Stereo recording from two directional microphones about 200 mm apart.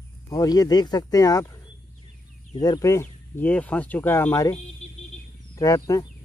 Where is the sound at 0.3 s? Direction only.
20° left (ahead or behind).